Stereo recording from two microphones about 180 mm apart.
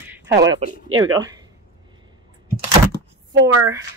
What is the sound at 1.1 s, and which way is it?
Speech, 20° right (ahead or behind).